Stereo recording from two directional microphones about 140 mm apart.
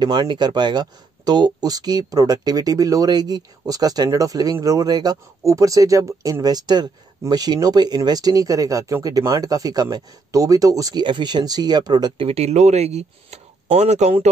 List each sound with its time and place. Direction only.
0.0 s speech: 30° right (ahead or behind); by 14.3 s 55° right (ahead or behind)